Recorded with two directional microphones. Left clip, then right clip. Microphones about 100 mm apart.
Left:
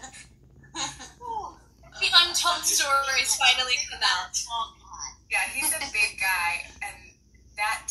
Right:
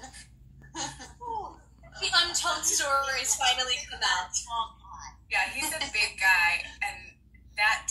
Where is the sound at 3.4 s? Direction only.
30° left (ahead or behind).